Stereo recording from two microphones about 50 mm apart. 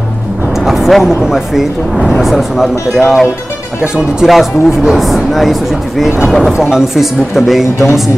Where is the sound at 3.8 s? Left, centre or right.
Centre.